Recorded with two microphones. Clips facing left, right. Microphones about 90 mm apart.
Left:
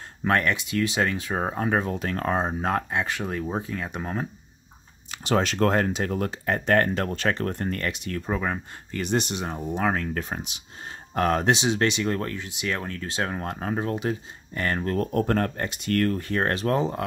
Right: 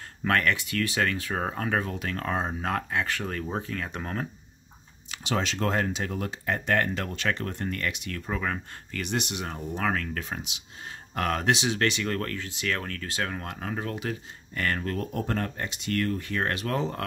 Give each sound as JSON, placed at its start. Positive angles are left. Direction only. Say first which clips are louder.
{"t": 0.2, "sound": "speech", "louder": "left 2 dB", "side_deg": 20}
{"t": 5.1, "sound": "speech", "louder": "left 5 dB", "side_deg": 45}
{"t": 8.3, "sound": "speech", "louder": "left 2 dB", "side_deg": 20}
{"t": 9.0, "sound": "speech", "louder": "left 5 dB", "side_deg": 35}
{"t": 15.0, "sound": "speech", "louder": "left 6 dB", "side_deg": 50}
{"t": 16.7, "sound": "speech", "louder": "left 4 dB", "side_deg": 15}